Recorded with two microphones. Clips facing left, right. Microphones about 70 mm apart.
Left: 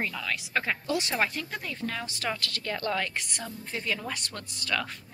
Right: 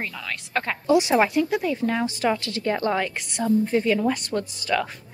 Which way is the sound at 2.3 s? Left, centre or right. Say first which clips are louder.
Right 9 dB; right.